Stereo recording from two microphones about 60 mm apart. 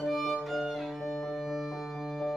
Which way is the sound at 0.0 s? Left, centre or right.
Centre.